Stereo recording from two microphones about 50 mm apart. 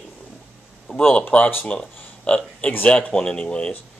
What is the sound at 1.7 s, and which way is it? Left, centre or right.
Speech, left.